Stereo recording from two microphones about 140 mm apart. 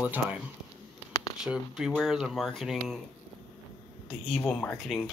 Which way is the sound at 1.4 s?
5° right (ahead or behind).